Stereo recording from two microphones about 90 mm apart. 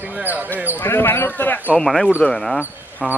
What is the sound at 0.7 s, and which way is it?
Speech, 25° left (ahead or behind).